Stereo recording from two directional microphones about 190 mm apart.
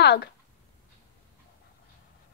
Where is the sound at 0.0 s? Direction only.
60° left (ahead or behind).